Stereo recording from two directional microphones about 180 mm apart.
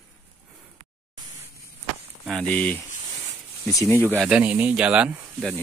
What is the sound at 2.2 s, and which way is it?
Speech, 5° left (ahead or behind).